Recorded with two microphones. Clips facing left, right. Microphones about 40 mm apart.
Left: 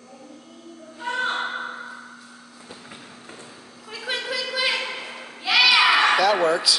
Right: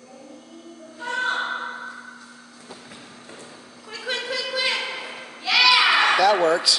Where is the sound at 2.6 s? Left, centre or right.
Centre.